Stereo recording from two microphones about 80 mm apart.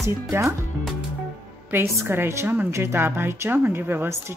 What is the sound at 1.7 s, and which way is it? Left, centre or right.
A woman's voice, right.